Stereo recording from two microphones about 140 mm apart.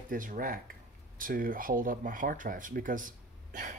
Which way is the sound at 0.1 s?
80° right.